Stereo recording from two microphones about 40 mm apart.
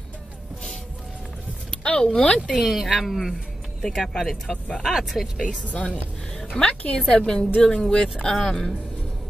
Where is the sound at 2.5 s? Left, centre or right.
Centre.